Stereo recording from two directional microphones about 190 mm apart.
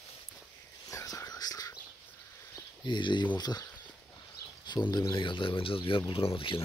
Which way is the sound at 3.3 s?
20° left (ahead or behind).